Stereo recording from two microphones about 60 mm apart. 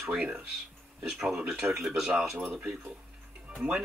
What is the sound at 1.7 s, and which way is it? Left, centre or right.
Speech, centre.